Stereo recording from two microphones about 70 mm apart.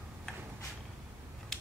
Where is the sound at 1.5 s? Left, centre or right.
Centre.